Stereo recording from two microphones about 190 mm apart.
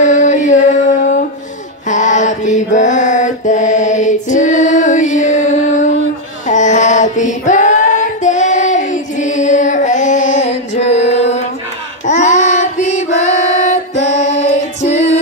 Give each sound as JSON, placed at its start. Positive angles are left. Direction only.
{"t": 0.0, "sound": "music", "side_deg": 40}
{"t": 1.9, "sound": "mantra", "side_deg": 40}
{"t": 6.4, "sound": "female singing", "side_deg": 40}
{"t": 12.1, "sound": "child singing", "side_deg": 40}